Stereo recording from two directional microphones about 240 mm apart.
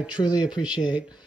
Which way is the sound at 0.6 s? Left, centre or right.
Centre.